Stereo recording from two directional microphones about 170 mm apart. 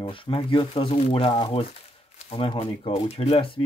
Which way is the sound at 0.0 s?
30° left (ahead or behind).